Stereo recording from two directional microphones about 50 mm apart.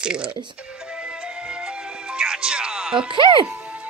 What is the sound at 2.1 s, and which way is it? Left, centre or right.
Music, centre.